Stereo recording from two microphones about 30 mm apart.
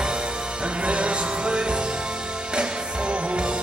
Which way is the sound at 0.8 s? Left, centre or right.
Right.